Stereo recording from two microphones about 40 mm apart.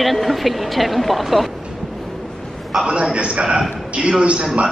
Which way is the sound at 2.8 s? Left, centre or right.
Right.